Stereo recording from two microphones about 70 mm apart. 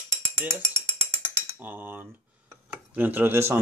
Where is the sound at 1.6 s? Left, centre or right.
Right.